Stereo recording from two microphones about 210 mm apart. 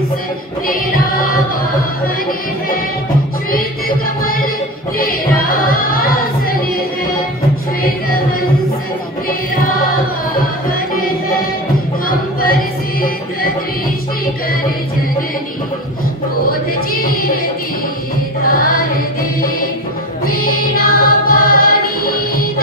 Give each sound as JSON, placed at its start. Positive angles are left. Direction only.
{"t": 0.7, "sound": "music", "side_deg": 40}
{"t": 5.5, "sound": "music", "side_deg": 45}
{"t": 16.4, "sound": "a sound", "side_deg": 45}
{"t": 18.4, "sound": "music", "side_deg": 40}
{"t": 20.7, "sound": "music", "side_deg": 45}